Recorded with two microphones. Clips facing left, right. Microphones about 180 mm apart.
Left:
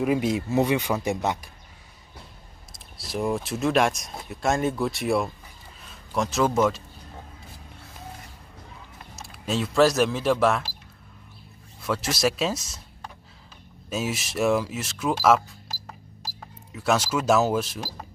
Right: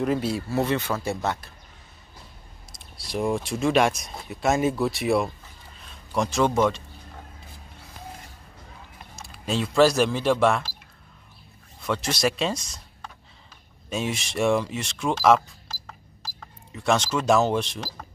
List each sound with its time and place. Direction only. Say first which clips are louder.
0.0 s speech: left 2 dB; 15° left (ahead or behind)
3.0 s speech: right 1 dB; centre (ahead or behind)
9.1 s speech: even; centre (ahead or behind)
11.8 s speech: even; 5° left (ahead or behind)